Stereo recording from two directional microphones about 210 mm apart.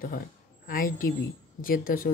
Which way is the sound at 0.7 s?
40° left (ahead or behind).